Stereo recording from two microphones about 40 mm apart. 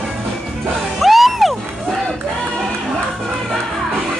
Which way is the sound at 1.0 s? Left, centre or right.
Centre.